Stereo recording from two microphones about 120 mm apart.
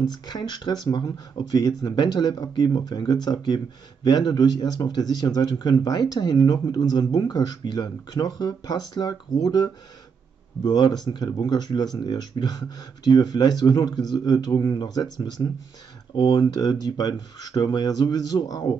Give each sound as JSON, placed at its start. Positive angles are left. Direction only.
{"t": 0.0, "sound": "speech", "side_deg": 35}